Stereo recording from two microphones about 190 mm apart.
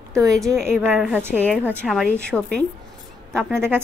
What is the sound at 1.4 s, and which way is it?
A woman's voice, 5° left (ahead or behind).